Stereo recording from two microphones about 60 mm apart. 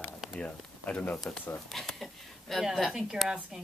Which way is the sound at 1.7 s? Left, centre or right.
Centre.